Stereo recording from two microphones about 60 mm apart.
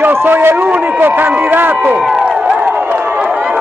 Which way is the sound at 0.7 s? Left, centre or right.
Right.